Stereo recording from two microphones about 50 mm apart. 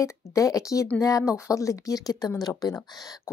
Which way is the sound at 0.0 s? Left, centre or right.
Left.